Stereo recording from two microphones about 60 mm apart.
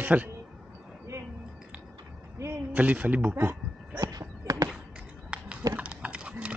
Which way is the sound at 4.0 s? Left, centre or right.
Right.